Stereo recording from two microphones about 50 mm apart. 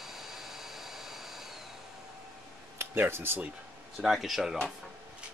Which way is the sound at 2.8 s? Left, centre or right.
Right.